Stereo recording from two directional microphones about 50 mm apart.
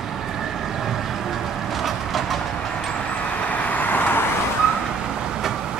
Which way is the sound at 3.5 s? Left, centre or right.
Left.